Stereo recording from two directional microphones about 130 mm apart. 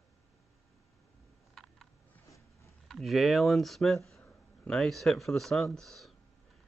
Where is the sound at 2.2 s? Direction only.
25° left (ahead or behind).